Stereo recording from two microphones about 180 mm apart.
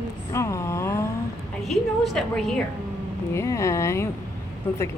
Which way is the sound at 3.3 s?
15° left (ahead or behind).